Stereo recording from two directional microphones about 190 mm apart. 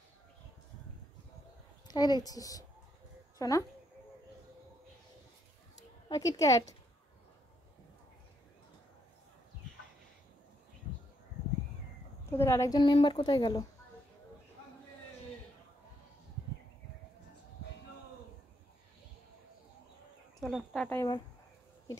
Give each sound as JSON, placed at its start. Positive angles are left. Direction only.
{"t": 1.9, "sound": "a woman's voice", "side_deg": 20}
{"t": 6.0, "sound": "a woman's voice", "side_deg": 20}
{"t": 12.3, "sound": "a woman's voice", "side_deg": 15}
{"t": 20.3, "sound": "speech", "side_deg": 0}